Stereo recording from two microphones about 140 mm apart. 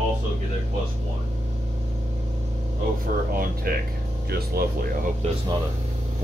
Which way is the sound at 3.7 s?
90° right.